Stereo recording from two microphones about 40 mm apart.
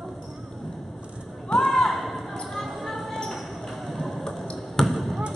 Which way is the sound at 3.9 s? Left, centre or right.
Centre.